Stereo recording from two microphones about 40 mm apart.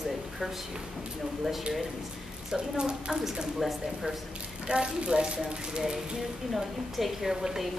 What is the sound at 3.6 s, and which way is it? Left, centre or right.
Speech, centre.